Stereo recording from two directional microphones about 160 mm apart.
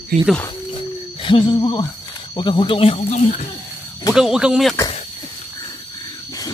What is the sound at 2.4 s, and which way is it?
Speech, 30° left (ahead or behind).